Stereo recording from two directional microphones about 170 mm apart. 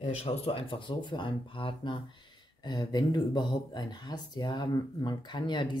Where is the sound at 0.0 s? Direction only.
35° left (ahead or behind).